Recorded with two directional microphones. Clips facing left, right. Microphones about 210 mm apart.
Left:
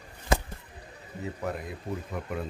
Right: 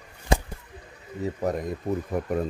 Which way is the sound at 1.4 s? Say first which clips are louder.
Right 7 dB; 40° right (ahead or behind).